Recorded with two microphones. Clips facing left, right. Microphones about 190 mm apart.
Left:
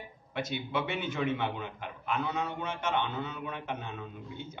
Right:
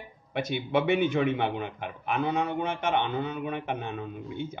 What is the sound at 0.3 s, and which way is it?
A man's voice, 55° right (ahead or behind).